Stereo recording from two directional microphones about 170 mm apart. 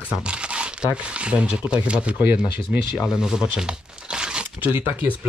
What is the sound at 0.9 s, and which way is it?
Speech, 5° right (ahead or behind).